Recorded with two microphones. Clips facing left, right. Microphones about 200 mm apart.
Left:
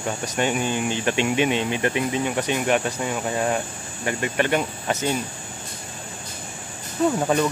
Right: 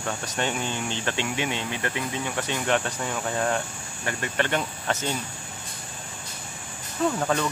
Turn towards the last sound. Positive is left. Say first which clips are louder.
# left 4 dB
turn(degrees=15)  # may be behind; listen again after turning